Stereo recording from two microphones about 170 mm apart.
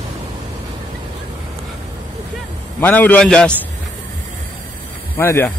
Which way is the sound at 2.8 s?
10° left (ahead or behind).